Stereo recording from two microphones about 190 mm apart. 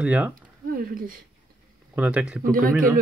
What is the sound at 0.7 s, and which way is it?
Speech, 50° right (ahead or behind).